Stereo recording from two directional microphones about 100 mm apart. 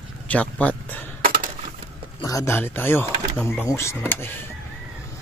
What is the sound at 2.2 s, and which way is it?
Speech, 35° left (ahead or behind).